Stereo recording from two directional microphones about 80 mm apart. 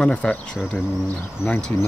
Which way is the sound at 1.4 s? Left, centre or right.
Left.